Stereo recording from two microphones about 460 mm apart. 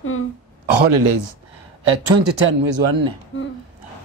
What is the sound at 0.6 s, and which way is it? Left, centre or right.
Speech, right.